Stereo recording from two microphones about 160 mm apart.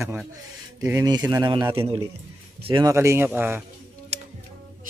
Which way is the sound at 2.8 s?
15° right (ahead or behind).